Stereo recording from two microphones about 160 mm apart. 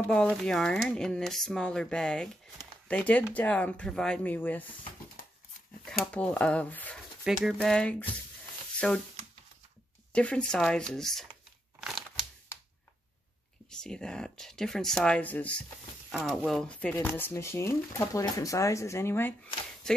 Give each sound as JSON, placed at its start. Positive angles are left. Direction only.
{"t": 0.0, "sound": "speech", "side_deg": 5}
{"t": 5.2, "sound": "dog", "side_deg": 65}
{"t": 5.9, "sound": "speech", "side_deg": 5}
{"t": 10.1, "sound": "speech", "side_deg": 5}
{"t": 13.7, "sound": "speech", "side_deg": 5}
{"t": 19.9, "sound": "speech", "side_deg": 5}